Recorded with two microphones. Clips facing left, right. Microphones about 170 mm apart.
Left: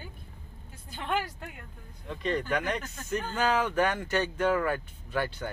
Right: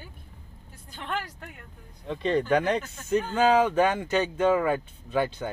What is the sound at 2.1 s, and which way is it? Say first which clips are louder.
Speech: right 6 dB; 30° right (ahead or behind).